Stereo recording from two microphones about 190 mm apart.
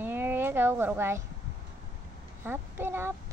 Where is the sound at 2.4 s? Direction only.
10° right (ahead or behind).